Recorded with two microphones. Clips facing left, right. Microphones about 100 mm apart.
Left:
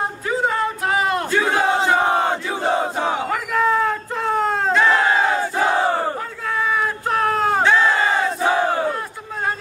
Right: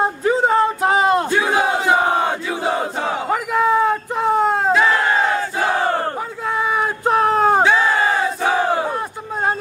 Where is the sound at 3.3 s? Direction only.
20° right (ahead or behind).